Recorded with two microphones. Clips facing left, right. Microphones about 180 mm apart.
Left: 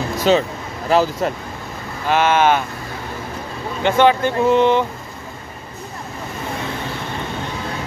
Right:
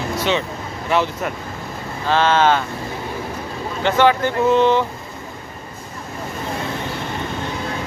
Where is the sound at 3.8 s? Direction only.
15° left (ahead or behind).